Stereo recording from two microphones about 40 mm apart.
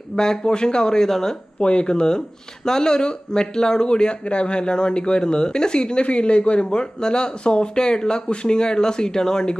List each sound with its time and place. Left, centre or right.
0.1 s speech: centre
1.6 s speech: left